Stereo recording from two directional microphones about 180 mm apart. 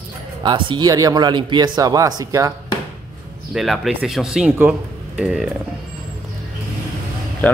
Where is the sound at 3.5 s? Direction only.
Centre (ahead or behind).